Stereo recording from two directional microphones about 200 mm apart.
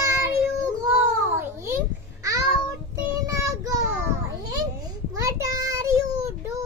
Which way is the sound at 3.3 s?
15° right (ahead or behind).